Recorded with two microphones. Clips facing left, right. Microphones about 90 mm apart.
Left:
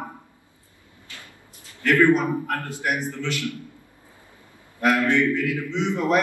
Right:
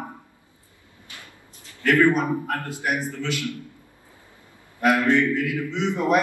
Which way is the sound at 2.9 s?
25° left (ahead or behind).